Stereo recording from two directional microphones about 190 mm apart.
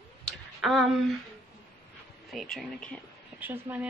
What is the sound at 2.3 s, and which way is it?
Speech, centre (ahead or behind).